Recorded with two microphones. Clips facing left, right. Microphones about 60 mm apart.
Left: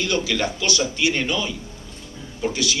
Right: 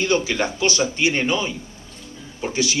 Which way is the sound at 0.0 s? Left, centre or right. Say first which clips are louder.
Right 2 dB; right.